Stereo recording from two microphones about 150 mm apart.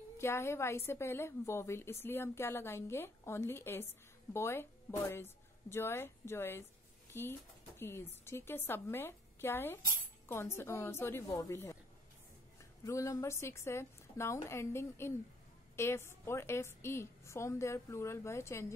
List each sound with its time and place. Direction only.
0.2 s a woman's voice: 15° left (ahead or behind)
12.8 s a woman's voice: 20° left (ahead or behind)